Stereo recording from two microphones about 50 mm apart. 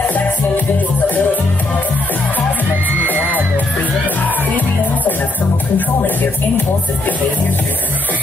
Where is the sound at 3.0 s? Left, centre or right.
Right.